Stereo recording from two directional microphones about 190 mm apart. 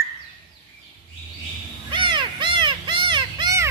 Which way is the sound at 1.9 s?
25° right (ahead or behind).